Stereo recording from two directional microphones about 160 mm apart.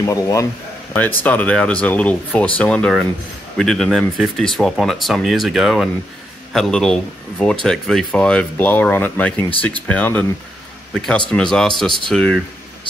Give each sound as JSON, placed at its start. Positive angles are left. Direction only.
{"t": 0.0, "sound": "a man's voice", "side_deg": 20}
{"t": 0.9, "sound": "speech", "side_deg": 10}